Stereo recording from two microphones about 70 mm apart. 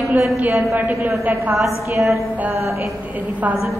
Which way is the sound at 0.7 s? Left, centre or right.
Right.